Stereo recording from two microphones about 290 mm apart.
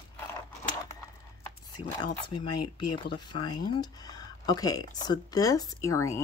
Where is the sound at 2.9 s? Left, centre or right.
Centre.